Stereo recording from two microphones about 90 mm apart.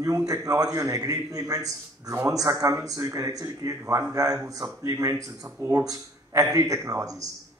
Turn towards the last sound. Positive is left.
turn(degrees=-35)  # may be behind; listen again after turning